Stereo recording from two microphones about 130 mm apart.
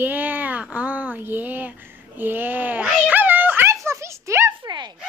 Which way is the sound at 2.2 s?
15° right (ahead or behind).